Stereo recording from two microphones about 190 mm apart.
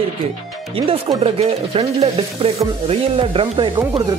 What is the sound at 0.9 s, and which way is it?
Sizzle, 20° right (ahead or behind).